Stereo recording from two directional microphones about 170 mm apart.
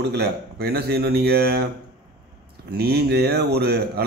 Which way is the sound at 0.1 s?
75° right (ahead or behind).